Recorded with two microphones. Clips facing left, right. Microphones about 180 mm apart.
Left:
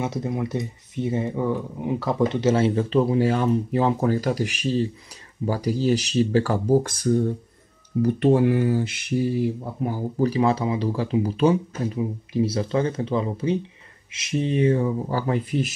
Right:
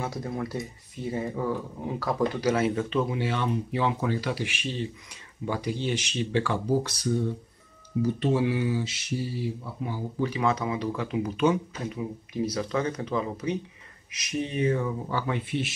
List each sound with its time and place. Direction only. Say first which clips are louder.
0.0 s speech: left 5 dB; 20° left (ahead or behind); by 7.3 s 50° left (ahead or behind)
8.0 s speech: left 6 dB; 60° left (ahead or behind); by 15.7 s 40° left (ahead or behind)